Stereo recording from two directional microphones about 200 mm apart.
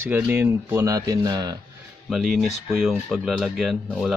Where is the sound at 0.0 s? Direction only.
10° right (ahead or behind).